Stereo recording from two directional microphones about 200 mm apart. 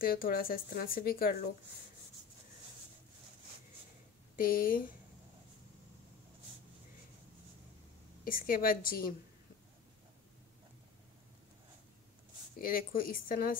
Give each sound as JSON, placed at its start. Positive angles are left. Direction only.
{"t": 0.0, "sound": "speech", "side_deg": 50}
{"t": 4.4, "sound": "speech", "side_deg": 45}
{"t": 8.2, "sound": "speech", "side_deg": 45}
{"t": 12.5, "sound": "speech", "side_deg": 45}